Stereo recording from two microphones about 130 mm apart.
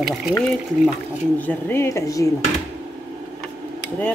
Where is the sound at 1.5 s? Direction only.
15° left (ahead or behind).